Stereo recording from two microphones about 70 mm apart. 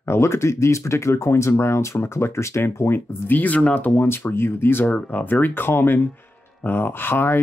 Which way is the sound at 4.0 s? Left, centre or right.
Left.